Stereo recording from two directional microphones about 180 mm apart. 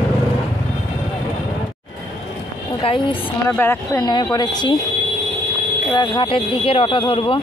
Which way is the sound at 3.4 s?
10° left (ahead or behind).